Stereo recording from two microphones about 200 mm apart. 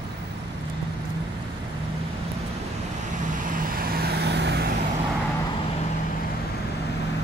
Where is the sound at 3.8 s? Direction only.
50° right (ahead or behind).